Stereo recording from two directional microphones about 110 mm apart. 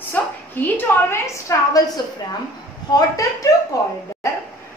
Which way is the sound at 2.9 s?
30° left (ahead or behind).